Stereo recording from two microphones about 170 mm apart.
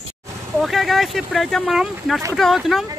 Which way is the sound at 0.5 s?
Centre (ahead or behind).